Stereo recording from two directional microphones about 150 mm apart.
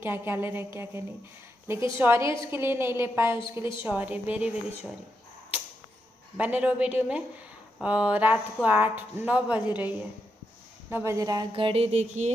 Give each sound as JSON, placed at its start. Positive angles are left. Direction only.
{"t": 0.0, "sound": "speech", "side_deg": -15}
{"t": 2.0, "sound": "speech", "side_deg": -15}
{"t": 6.3, "sound": "speech", "side_deg": -10}
{"t": 11.5, "sound": "a sound", "side_deg": -40}